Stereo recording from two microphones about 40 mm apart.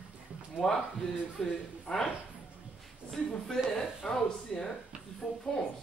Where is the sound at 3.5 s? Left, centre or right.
Centre.